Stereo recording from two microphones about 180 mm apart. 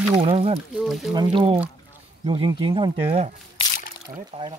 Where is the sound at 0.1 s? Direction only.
35° right (ahead or behind).